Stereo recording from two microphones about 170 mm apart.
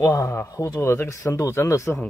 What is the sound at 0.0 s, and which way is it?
Speech, 20° left (ahead or behind).